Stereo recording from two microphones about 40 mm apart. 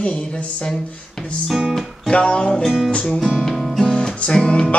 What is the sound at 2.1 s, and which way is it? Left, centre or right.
Music, left.